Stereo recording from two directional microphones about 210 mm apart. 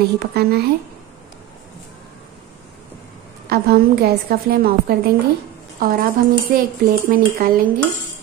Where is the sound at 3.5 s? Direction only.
50° right (ahead or behind).